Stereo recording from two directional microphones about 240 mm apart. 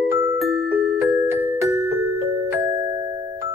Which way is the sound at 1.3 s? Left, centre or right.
Centre.